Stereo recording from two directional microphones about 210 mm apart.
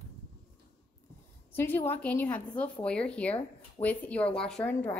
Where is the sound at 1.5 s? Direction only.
10° left (ahead or behind).